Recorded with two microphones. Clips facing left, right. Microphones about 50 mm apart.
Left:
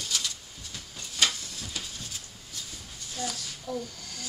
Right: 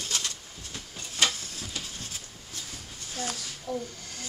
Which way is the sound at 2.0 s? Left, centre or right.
Right.